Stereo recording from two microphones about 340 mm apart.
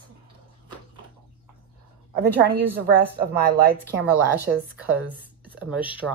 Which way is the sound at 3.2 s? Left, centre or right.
Right.